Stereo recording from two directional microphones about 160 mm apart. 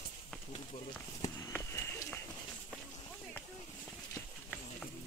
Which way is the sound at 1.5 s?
20° left (ahead or behind).